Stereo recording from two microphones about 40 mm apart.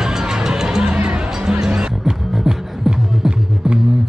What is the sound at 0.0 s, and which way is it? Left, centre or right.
Music, centre.